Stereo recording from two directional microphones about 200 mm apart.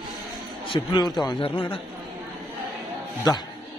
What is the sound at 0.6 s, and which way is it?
A man's voice, 25° left (ahead or behind).